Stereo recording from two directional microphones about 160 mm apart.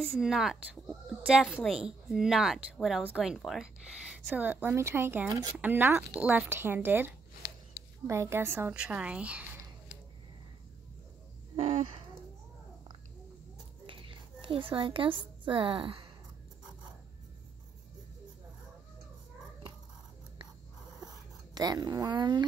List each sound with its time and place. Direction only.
0.0 s a woman's voice: centre (ahead or behind)
8.1 s a woman's voice: 15° right (ahead or behind)
11.5 s speech: 40° right (ahead or behind)
13.8 s a woman's voice: 35° right (ahead or behind)
21.5 s speech: 25° right (ahead or behind)